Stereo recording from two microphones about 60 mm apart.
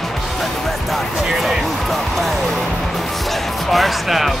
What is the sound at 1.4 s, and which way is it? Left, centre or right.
Basketball bounce, centre.